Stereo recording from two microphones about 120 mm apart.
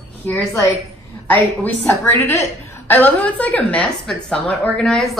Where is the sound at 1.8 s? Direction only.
20° left (ahead or behind).